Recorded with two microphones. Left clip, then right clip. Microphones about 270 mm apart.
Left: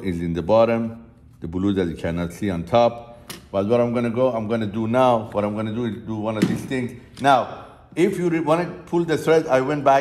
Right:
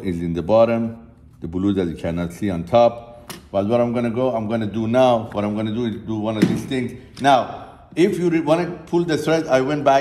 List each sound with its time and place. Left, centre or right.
0.0 s a man's voice: centre
4.7 s speech: left